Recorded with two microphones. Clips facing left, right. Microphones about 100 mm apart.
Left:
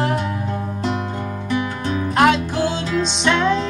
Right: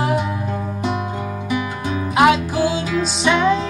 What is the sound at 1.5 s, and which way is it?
Music, 10° right (ahead or behind).